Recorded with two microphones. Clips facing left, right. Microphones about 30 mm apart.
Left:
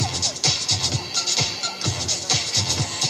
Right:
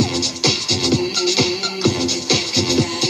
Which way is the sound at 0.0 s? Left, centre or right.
Right.